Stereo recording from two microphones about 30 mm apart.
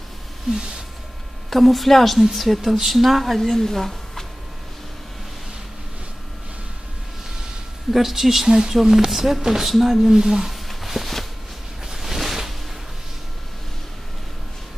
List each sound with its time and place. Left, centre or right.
1.5 s a woman's voice: centre
3.3 s a woman's voice: centre
7.9 s a woman's voice: centre
10.5 s a sound: centre